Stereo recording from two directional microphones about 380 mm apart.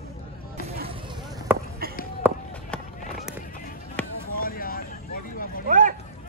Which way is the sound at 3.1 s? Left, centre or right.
Centre.